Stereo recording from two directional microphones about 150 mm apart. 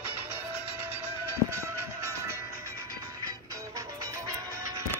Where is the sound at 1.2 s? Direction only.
15° right (ahead or behind).